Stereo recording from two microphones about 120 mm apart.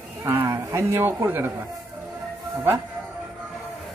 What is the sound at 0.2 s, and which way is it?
A man's voice, 20° right (ahead or behind).